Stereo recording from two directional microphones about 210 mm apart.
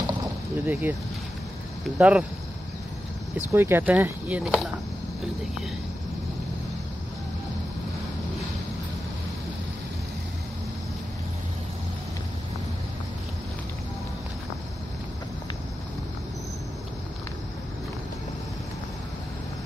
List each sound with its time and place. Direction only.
0.0 s a sound: 10° right (ahead or behind)
2.0 s speech: 5° right (ahead or behind)
3.5 s speech: 10° right (ahead or behind)